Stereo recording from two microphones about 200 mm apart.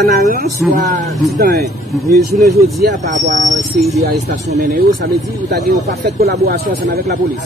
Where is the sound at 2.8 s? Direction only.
50° right (ahead or behind).